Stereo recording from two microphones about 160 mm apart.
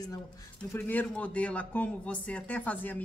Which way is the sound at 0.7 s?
10° left (ahead or behind).